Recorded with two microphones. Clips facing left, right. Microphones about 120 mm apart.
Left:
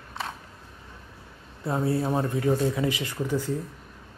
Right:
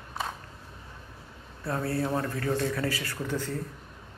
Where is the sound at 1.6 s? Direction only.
25° left (ahead or behind).